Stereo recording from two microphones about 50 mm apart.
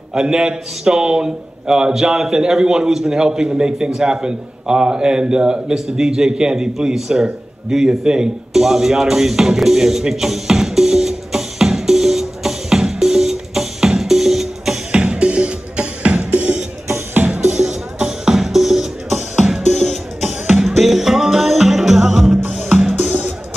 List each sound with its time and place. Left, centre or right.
0.1 s a man's voice: centre
7.7 s music: centre
14.9 s music: right
17.6 s music: centre
20.2 s music: centre
20.6 s music: centre